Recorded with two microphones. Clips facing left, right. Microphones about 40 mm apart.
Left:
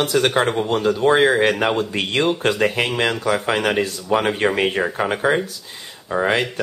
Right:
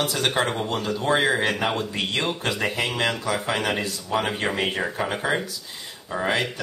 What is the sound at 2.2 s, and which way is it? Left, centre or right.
Speech, centre.